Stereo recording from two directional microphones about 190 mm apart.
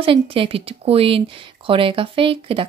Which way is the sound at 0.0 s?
30° right (ahead or behind).